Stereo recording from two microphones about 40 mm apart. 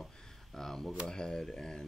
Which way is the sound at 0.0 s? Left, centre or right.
Centre.